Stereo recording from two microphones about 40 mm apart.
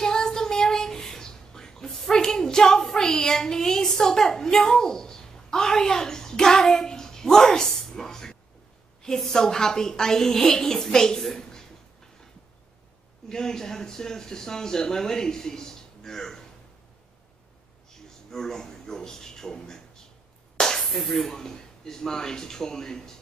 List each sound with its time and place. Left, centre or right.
0.0 s a sound: centre
9.0 s speech: centre
13.3 s speech: centre
18.3 s a man's voice: centre
20.6 s a sound: left
20.9 s speech: centre
21.3 s speech: centre